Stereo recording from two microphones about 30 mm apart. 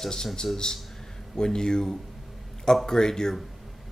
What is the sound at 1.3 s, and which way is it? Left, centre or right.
Speech, left.